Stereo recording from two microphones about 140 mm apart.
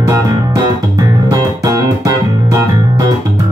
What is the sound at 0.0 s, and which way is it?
Music, 25° right (ahead or behind).